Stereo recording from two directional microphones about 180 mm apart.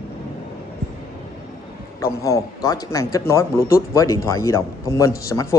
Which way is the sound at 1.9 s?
15° left (ahead or behind).